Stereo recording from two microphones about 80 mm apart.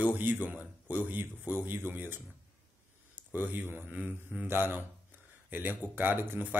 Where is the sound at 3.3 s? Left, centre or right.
Right.